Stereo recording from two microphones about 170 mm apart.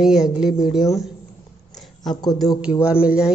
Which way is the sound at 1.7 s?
Centre (ahead or behind).